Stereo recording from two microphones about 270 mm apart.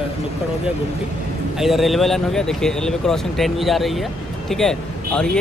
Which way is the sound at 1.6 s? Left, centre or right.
Centre.